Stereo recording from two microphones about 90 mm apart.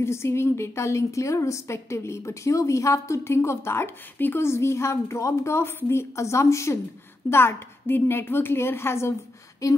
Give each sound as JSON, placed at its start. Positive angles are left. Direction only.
{"t": 0.0, "sound": "a woman's voice", "side_deg": 30}